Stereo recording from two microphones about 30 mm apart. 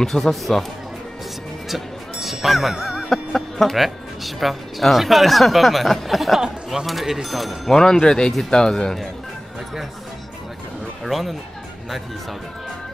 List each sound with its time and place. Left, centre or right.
0.0 s speech: centre
1.7 s music: centre
3.1 s music: centre
3.7 s speech: centre
6.4 s speech: centre
6.9 s speech: centre
7.7 s speech: left
11.1 s speech: centre